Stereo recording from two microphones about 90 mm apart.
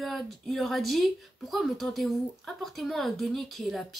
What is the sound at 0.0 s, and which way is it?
Speech, centre (ahead or behind).